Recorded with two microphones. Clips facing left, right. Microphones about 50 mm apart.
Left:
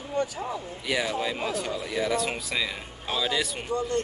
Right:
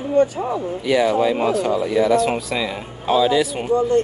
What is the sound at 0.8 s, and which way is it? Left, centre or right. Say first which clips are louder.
Speech: right 11 dB; centre.